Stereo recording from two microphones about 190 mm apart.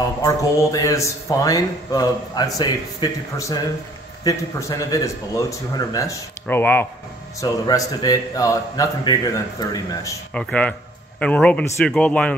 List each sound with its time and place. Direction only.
0.2 s a man's voice: 15° left (ahead or behind)
10.3 s a man's voice: 5° left (ahead or behind)